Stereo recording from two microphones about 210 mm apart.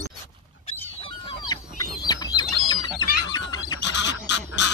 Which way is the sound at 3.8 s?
60° left (ahead or behind).